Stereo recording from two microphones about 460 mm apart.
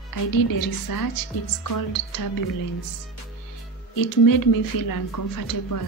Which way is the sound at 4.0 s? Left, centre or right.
Left.